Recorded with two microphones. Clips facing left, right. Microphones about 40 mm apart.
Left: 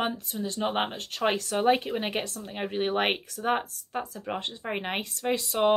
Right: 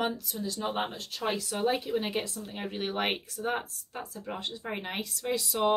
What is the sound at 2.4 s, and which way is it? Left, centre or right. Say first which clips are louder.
Speech: left 5 dB; left.